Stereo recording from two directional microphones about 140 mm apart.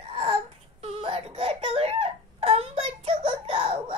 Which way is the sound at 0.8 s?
45° right (ahead or behind).